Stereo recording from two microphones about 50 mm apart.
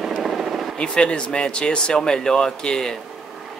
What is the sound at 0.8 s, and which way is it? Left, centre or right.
Speech, centre.